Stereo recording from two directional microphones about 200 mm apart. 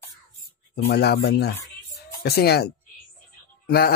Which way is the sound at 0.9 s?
55° left (ahead or behind).